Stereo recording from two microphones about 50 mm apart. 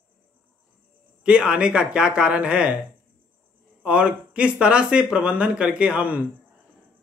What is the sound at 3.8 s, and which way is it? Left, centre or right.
Speech, right.